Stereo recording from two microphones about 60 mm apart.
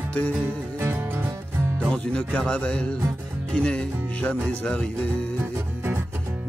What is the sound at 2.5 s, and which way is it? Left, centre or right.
Speech, centre.